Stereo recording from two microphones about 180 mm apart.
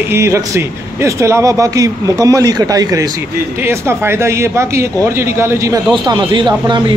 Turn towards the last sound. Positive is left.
turn(degrees=-25)  # may be behind; listen again after turning